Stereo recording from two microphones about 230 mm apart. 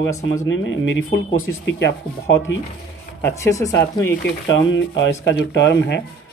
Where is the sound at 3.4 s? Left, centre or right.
Centre.